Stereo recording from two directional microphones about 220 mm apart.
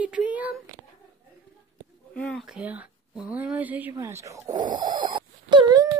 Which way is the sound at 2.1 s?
5° left (ahead or behind).